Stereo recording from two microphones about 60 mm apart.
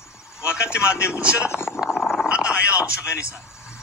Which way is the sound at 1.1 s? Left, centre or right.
Centre.